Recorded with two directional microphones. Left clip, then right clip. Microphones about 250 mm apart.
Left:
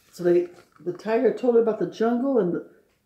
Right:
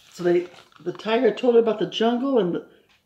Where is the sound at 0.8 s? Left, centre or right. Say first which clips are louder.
Right 1 dB; centre.